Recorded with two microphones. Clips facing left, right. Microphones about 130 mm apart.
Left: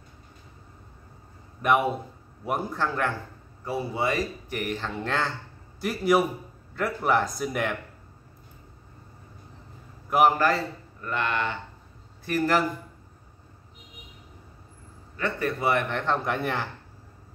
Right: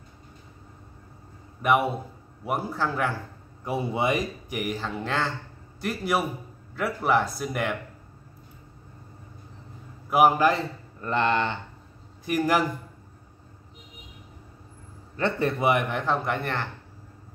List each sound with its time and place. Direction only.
1.6 s speech: 5° right (ahead or behind)
3.6 s a man's voice: 20° right (ahead or behind); by 7.7 s centre (ahead or behind)
10.0 s a man's voice: 5° right (ahead or behind)
11.0 s a man's voice: 30° right (ahead or behind)
12.3 s a man's voice: 15° right (ahead or behind)
15.1 s a man's voice: 25° right (ahead or behind); by 16.2 s 10° right (ahead or behind)
16.3 s speech: 5° left (ahead or behind)